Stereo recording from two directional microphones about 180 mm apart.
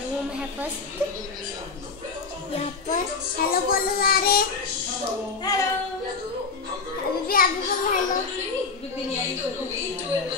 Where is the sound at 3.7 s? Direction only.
55° left (ahead or behind).